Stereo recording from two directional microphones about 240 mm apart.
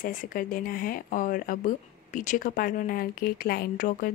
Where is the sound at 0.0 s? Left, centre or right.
Left.